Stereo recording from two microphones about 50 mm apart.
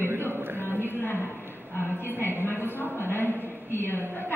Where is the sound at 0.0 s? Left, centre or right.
Right.